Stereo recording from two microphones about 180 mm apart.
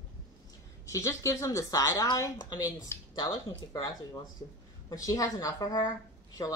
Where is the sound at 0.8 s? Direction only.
15° left (ahead or behind).